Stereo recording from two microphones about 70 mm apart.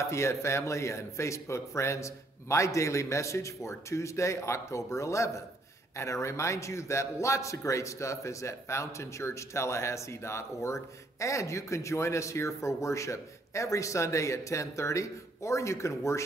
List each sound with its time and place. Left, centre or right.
0.0 s a man's voice: left